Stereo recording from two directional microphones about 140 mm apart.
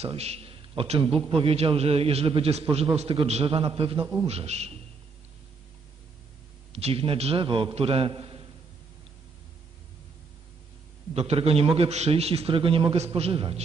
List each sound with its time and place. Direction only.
0.0 s a man's voice: 50° right (ahead or behind)
4.3 s a man's voice: 50° right (ahead or behind)
6.7 s a man's voice: 45° right (ahead or behind)
11.1 s a man's voice: 45° right (ahead or behind)